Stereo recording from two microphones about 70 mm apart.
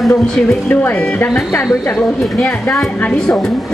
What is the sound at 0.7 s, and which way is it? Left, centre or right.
Speech, left.